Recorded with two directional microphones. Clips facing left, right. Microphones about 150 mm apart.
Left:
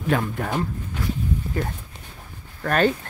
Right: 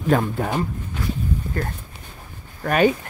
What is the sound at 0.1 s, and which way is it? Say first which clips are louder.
Speech: right 4 dB; 40° right (ahead or behind).